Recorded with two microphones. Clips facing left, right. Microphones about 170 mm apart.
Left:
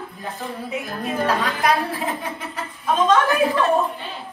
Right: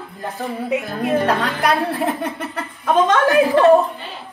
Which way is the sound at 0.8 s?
65° right (ahead or behind).